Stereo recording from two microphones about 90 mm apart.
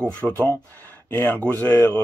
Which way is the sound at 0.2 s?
25° left (ahead or behind).